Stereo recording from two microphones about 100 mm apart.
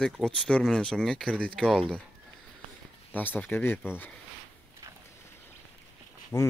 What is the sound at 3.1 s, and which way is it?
Speech, 20° left (ahead or behind).